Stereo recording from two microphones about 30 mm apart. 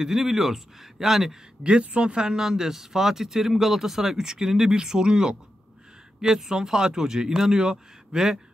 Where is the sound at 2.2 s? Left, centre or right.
Centre.